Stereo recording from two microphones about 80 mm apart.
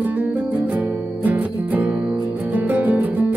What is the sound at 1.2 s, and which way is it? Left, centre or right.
Music, right.